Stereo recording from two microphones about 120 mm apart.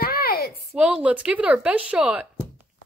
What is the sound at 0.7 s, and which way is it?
Speech, 10° right (ahead or behind).